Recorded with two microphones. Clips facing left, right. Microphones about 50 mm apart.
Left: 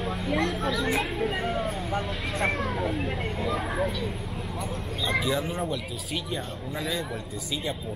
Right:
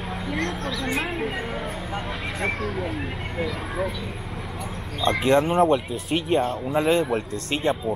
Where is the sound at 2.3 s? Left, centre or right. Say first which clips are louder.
Even; centre.